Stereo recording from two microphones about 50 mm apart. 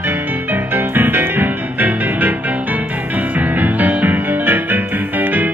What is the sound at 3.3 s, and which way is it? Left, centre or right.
Music, right.